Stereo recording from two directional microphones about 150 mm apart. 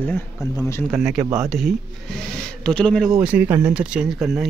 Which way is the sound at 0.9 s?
5° right (ahead or behind).